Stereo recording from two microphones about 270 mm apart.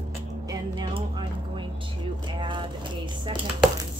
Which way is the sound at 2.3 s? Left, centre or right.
Centre.